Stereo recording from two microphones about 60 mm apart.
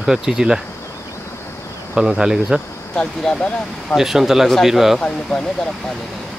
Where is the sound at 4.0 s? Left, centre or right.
Centre.